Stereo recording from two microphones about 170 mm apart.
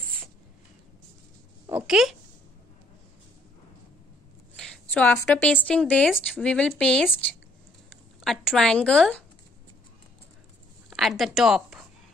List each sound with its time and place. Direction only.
1.7 s speech: 5° right (ahead or behind)
4.6 s a woman's voice: 5° left (ahead or behind)
10.9 s a woman's voice: centre (ahead or behind)